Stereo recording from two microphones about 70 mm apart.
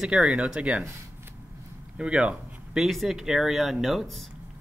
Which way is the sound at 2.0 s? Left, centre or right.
Centre.